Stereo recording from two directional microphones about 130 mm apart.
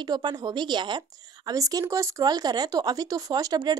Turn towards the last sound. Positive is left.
turn(degrees=-30)  # may be behind; listen again after turning